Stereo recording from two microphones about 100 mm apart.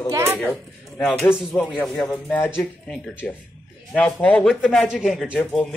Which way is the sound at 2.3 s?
20° left (ahead or behind).